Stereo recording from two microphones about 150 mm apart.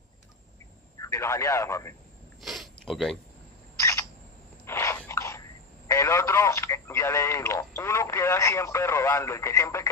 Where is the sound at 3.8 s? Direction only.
20° left (ahead or behind).